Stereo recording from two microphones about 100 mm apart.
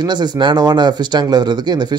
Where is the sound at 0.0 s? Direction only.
45° right (ahead or behind).